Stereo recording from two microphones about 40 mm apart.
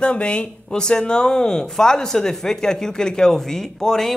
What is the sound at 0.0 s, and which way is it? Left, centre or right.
Speech, left.